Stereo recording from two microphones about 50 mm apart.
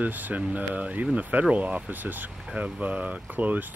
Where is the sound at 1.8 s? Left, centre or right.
Right.